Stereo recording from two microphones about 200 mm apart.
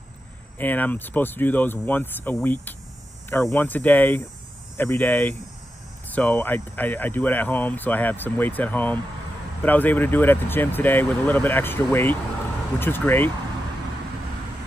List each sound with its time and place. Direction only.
0.6 s speech: 10° left (ahead or behind)